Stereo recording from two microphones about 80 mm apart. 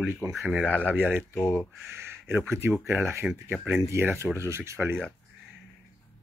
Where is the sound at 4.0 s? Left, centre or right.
Right.